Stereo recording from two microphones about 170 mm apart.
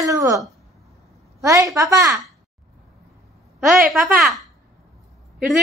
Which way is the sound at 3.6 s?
Centre (ahead or behind).